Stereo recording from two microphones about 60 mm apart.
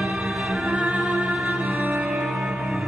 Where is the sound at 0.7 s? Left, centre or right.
Right.